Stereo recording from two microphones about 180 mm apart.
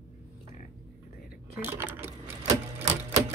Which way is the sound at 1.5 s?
10° right (ahead or behind).